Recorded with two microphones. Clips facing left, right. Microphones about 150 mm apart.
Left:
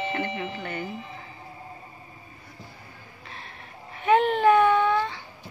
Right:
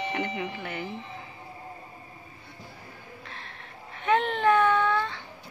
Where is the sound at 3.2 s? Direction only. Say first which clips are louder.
Left 1 dB; 5° left (ahead or behind).